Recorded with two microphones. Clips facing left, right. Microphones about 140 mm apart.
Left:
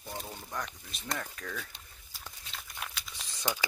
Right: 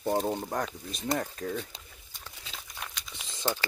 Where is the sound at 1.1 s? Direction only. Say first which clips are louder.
Right 8 dB; 35° right (ahead or behind).